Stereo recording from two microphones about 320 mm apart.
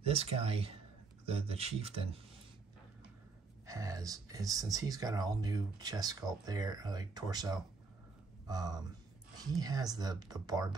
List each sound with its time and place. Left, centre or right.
0.0 s speech: centre
3.6 s speech: centre